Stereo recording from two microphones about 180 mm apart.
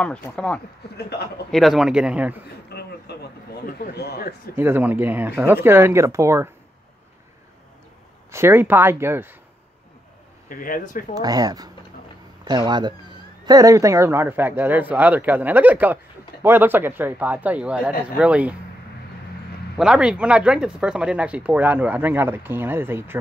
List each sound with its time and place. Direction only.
0.0 s speech: 5° left (ahead or behind)
2.7 s a sound: 65° left (ahead or behind)
4.6 s speech: 10° right (ahead or behind)
8.3 s speech: 15° right (ahead or behind)
10.5 s speech: 50° left (ahead or behind)
11.1 s speech: 20° right (ahead or behind)
19.8 s speech: 5° right (ahead or behind)